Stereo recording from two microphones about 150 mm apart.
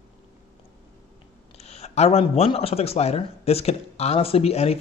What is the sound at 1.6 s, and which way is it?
Speech, 45° left (ahead or behind).